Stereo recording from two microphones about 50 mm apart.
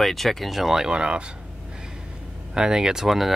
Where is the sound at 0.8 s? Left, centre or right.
Centre.